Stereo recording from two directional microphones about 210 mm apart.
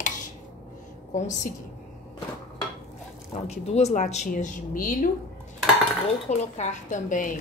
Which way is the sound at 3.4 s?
30° left (ahead or behind).